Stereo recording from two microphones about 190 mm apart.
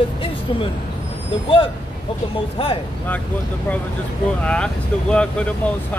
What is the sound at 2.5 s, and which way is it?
Speech, 30° left (ahead or behind).